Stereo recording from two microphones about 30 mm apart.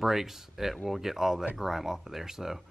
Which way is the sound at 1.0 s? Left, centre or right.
Centre.